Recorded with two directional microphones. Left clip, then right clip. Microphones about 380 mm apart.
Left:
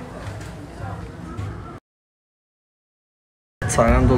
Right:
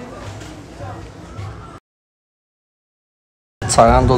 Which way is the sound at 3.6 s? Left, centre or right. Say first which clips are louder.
Right 7 dB; centre.